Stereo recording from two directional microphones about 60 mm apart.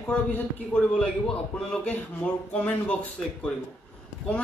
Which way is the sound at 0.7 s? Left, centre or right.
Centre.